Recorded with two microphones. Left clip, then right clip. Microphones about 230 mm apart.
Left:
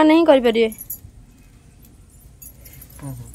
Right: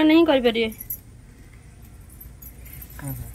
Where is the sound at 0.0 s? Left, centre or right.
Centre.